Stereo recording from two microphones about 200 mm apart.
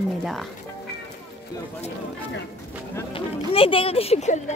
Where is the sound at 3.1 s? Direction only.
25° left (ahead or behind).